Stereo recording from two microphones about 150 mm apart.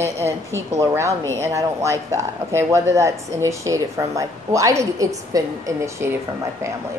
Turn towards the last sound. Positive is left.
turn(degrees=-15)  # may be behind; listen again after turning